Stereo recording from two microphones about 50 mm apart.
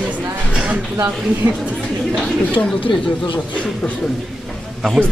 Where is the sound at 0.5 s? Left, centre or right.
Right.